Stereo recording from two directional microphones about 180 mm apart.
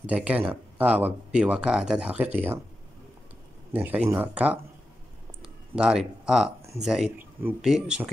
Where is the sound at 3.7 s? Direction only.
10° right (ahead or behind).